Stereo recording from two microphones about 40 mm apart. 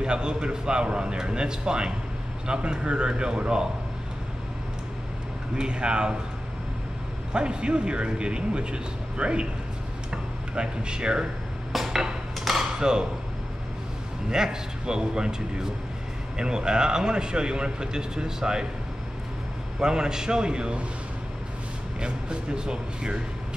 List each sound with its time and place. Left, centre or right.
0.0 s speech: right
5.6 s speech: right
7.3 s speech: right
11.7 s dishes: centre
12.4 s a sound: centre
12.7 s speech: centre
14.3 s speech: centre
16.3 s speech: centre
19.8 s speech: centre
22.0 s speech: right